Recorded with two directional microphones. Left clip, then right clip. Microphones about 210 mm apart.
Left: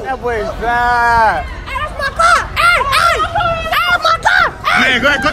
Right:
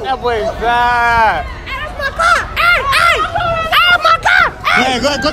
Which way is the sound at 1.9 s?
30° left (ahead or behind).